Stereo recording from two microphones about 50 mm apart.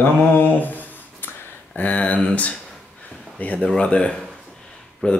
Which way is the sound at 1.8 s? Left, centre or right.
Left.